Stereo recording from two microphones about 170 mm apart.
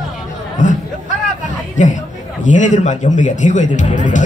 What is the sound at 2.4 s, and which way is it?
Speech, 45° left (ahead or behind).